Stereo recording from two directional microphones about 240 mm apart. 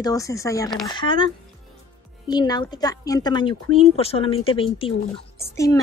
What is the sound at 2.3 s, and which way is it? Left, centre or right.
A woman's voice, centre.